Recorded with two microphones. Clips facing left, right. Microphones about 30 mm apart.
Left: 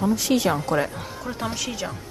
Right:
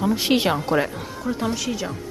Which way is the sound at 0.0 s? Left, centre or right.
Right.